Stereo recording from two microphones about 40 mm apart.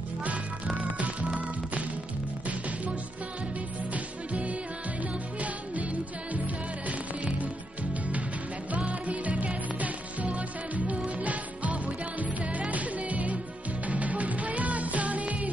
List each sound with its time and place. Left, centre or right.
0.9 s music: right
3.9 s music: right
8.7 s music: right